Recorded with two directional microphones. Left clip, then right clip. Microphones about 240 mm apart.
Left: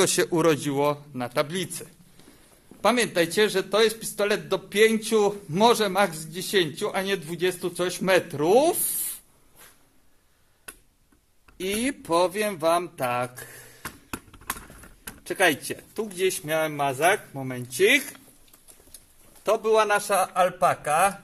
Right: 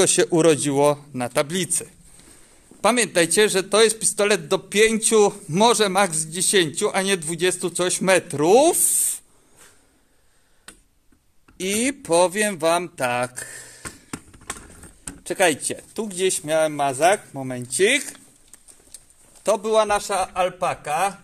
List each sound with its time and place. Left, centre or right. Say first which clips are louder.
0.0 s a man's voice: right 4 dB; right
11.5 s speech: right 4 dB; right
15.2 s speech: right 3 dB; right
19.4 s speech: right 2 dB; right
20.0 s a man's voice: even; centre